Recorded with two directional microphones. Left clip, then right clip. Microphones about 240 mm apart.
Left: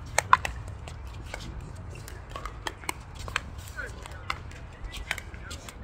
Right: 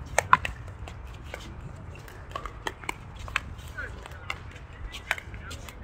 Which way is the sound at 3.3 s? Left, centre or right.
Left.